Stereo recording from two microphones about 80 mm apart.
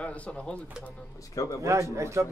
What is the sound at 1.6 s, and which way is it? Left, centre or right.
Speech, right.